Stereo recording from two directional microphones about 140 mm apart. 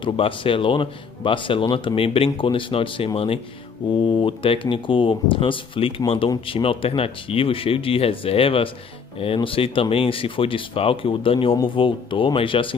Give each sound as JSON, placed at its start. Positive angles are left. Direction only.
{"t": 0.0, "sound": "speech", "side_deg": 40}